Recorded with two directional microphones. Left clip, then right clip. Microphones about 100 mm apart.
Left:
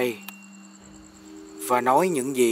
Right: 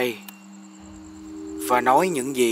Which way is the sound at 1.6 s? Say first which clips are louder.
Right 2 dB; centre (ahead or behind).